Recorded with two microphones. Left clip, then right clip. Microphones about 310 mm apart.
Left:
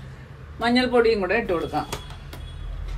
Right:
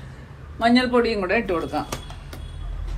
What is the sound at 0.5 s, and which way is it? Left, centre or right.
Speech, centre.